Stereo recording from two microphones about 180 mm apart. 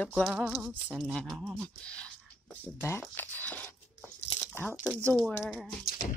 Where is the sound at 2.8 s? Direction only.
10° left (ahead or behind).